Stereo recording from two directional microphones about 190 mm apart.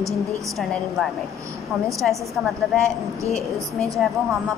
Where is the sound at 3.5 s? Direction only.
15° right (ahead or behind).